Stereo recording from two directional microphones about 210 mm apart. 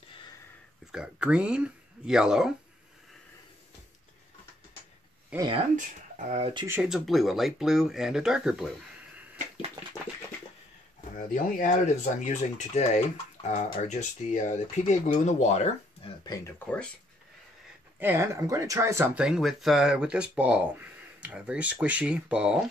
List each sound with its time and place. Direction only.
0.9 s speech: 5° right (ahead or behind)
5.3 s speech: 20° right (ahead or behind)
5.8 s speech: 35° right (ahead or behind)
6.7 s speech: 5° right (ahead or behind)
11.1 s speech: 40° left (ahead or behind)
16.3 s speech: 10° left (ahead or behind)
17.9 s speech: 10° right (ahead or behind)